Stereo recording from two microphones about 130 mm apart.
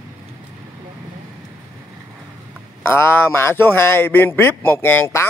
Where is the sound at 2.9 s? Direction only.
15° left (ahead or behind).